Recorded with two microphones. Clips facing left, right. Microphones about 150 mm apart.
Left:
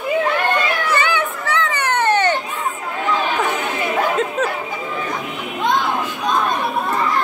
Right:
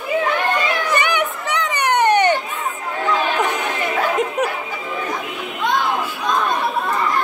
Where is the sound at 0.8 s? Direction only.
20° right (ahead or behind).